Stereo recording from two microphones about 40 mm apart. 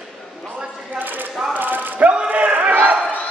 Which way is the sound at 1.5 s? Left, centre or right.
Right.